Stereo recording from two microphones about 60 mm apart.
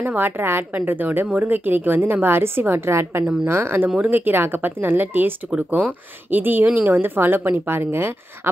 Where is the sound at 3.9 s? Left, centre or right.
Right.